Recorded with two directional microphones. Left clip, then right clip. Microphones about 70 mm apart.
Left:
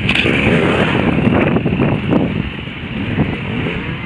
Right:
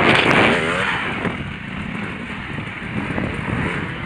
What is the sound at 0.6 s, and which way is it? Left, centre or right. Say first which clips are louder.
Vehicle: left 5 dB; right.